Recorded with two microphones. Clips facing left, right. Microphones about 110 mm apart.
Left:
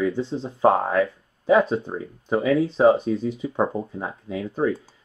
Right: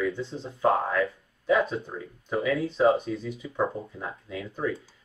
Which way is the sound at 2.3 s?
70° left (ahead or behind).